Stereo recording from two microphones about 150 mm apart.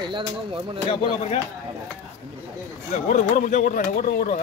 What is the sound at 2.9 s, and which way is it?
Speech, 50° left (ahead or behind).